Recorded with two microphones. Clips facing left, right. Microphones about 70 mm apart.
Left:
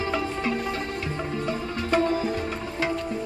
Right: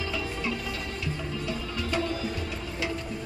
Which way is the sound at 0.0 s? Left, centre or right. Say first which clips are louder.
Left 5 dB; left.